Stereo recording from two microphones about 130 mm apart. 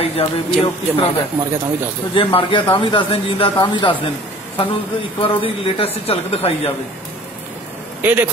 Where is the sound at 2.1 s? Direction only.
45° left (ahead or behind).